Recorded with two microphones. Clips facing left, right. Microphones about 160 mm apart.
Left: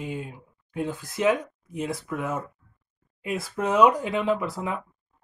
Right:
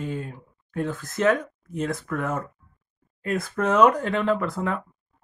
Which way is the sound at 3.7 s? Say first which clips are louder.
Right 1 dB; 50° right (ahead or behind).